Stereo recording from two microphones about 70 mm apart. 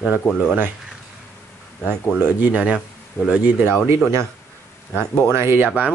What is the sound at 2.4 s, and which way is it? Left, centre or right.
Speech, centre.